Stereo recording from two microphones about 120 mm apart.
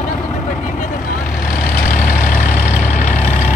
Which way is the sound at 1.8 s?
90° left.